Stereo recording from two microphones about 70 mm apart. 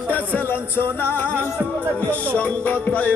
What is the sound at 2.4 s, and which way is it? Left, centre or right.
Music, left.